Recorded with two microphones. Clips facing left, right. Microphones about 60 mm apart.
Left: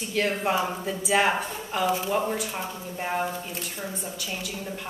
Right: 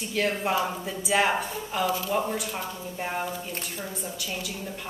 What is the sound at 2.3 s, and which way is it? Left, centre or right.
Speech, centre.